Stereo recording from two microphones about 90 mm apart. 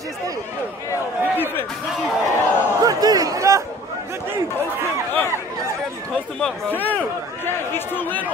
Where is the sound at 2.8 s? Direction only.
45° right (ahead or behind).